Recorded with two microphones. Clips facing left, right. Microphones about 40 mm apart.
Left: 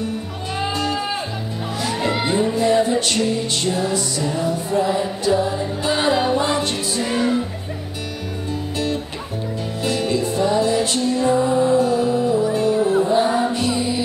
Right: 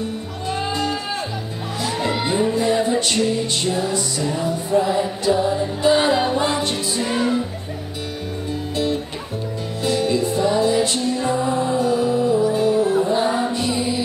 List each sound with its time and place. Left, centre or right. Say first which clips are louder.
1.8 s music: left 1 dB; centre
9.8 s music: right 2 dB; centre